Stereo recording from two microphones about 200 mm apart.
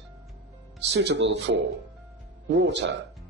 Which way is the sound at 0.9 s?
55° right (ahead or behind).